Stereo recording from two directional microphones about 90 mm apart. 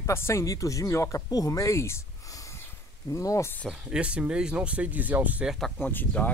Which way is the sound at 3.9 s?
10° right (ahead or behind).